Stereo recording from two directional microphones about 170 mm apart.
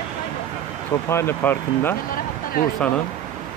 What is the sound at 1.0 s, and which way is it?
Speech, 15° left (ahead or behind).